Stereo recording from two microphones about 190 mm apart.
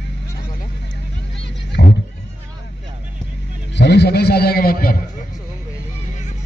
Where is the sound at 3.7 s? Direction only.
60° left (ahead or behind).